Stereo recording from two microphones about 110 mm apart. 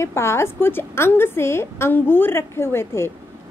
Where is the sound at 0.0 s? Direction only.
25° left (ahead or behind).